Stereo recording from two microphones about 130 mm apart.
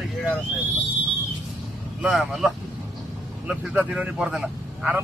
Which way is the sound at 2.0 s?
Centre (ahead or behind).